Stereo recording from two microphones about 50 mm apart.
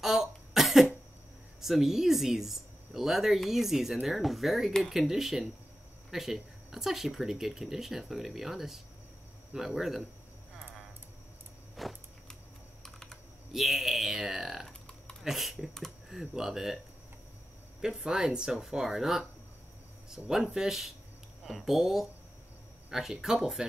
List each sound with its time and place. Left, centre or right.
0.0 s cough: centre
1.6 s speech: centre
11.8 s walk: centre
12.8 s typing: centre
13.5 s speech: centre
14.7 s typing: centre
15.2 s speech: centre
17.8 s speech: centre
20.2 s speech: left
20.5 s speech: centre